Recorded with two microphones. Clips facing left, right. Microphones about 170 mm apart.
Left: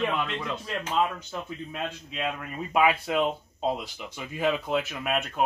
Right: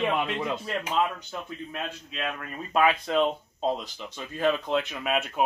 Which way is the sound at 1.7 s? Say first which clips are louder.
Left 1 dB; 15° left (ahead or behind).